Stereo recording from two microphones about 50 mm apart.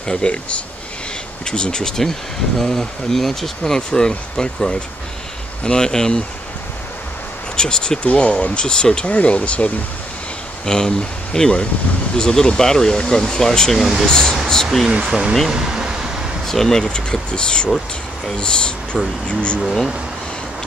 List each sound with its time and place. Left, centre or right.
0.0 s speech: centre
7.5 s speech: centre
9.0 s speech: left
10.6 s speech: centre
14.9 s speech: centre
16.4 s speech: centre
16.9 s speech: centre
19.6 s speech: centre